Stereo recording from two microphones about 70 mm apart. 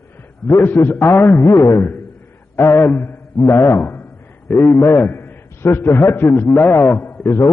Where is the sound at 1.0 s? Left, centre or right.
Left.